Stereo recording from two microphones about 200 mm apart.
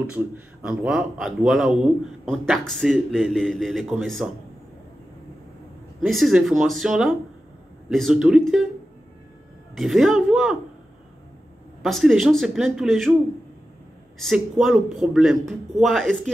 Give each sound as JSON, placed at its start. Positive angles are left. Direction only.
{"t": 0.0, "sound": "speech", "side_deg": -5}
{"t": 5.9, "sound": "speech", "side_deg": 0}
{"t": 9.8, "sound": "speech", "side_deg": 0}
{"t": 11.8, "sound": "speech", "side_deg": 0}
{"t": 14.2, "sound": "speech", "side_deg": 0}